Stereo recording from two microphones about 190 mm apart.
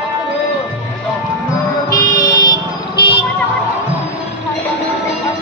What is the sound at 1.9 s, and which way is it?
Music, 20° left (ahead or behind).